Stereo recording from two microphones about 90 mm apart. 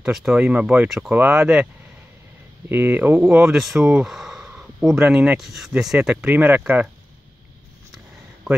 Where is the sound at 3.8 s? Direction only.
20° right (ahead or behind).